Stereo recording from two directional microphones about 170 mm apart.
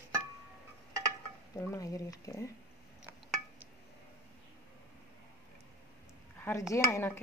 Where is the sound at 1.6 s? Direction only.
20° left (ahead or behind).